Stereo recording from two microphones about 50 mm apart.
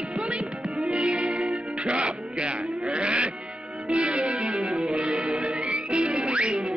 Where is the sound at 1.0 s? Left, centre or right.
Right.